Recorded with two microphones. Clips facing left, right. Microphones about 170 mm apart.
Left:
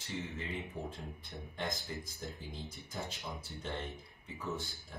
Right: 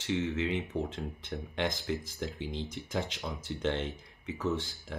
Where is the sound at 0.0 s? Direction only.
80° right.